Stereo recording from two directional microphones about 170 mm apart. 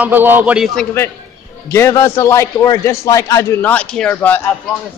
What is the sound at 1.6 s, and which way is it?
A man's voice, 15° left (ahead or behind).